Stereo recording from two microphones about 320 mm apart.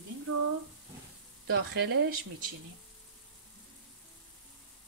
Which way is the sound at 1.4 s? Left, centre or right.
Right.